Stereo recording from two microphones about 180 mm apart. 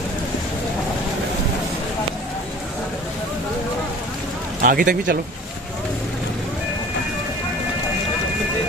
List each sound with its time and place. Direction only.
4.6 s speech: 50° right (ahead or behind)